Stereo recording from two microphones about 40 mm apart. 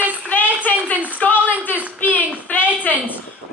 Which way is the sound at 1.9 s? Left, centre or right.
Left.